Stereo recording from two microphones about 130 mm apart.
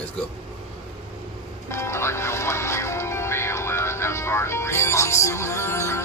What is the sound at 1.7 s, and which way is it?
Music, 20° left (ahead or behind).